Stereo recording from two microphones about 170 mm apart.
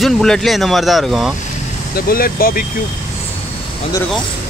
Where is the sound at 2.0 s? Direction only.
60° left (ahead or behind).